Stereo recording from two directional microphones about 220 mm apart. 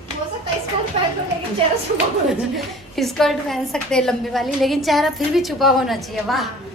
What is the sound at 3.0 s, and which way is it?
A woman's voice, centre (ahead or behind).